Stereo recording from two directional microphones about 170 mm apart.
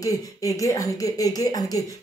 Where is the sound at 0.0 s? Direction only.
20° left (ahead or behind).